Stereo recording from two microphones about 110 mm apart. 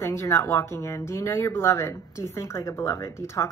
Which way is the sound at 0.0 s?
25° left (ahead or behind).